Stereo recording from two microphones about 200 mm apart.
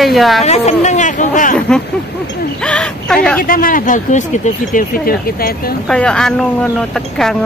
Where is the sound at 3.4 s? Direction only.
45° left (ahead or behind).